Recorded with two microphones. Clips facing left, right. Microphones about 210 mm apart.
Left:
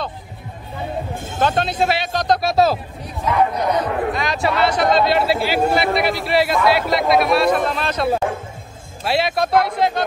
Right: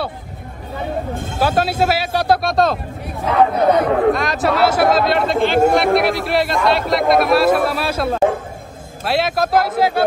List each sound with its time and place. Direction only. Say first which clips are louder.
1.4 s speech: right 2 dB; 5° right (ahead or behind)
3.5 s speech: right 5 dB; 55° right (ahead or behind)
4.1 s speech: right 4 dB; centre (ahead or behind)